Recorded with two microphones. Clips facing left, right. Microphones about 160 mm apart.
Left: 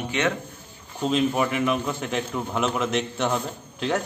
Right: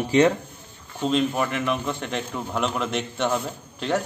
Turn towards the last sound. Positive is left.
turn(degrees=0)  # may be behind; listen again after turning